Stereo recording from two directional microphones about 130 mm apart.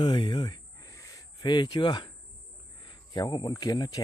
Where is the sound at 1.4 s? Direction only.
35° left (ahead or behind).